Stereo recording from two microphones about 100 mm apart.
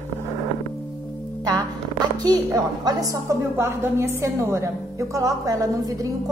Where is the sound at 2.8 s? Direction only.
40° right (ahead or behind).